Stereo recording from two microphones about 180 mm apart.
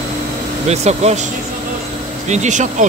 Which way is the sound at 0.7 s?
35° right (ahead or behind).